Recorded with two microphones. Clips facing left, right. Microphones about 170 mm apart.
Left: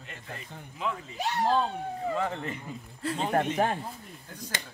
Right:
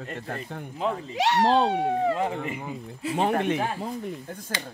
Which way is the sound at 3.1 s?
70° right (ahead or behind).